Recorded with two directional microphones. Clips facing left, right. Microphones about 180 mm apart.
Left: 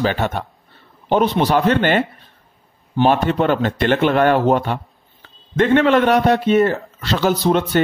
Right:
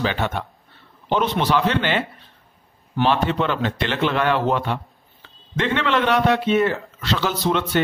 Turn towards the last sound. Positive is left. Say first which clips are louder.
# left 5 dB
turn(degrees=45)  # may be behind; listen again after turning